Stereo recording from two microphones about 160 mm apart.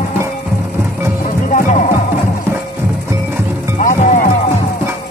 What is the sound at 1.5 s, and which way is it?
Music, 50° left (ahead or behind).